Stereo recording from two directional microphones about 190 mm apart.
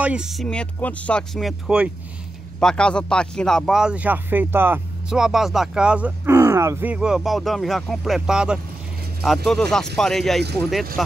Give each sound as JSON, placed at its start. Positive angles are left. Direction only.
{"t": 0.0, "sound": "speech", "side_deg": -5}